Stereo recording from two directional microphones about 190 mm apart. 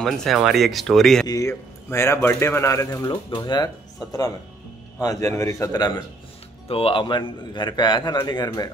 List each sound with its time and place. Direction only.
0.0 s speech: centre (ahead or behind)
1.2 s a man's voice: 20° left (ahead or behind)